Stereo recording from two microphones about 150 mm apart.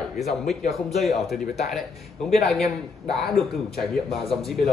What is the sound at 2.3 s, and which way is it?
Speech, centre (ahead or behind).